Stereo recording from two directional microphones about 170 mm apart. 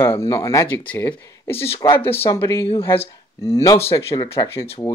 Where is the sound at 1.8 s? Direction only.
25° left (ahead or behind).